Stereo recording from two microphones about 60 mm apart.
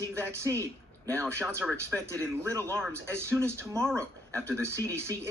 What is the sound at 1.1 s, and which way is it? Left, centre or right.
Speech, right.